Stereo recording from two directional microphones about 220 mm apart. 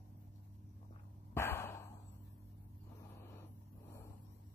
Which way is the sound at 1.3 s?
10° left (ahead or behind).